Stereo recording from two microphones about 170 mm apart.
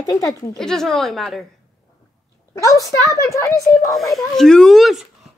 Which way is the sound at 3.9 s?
Centre (ahead or behind).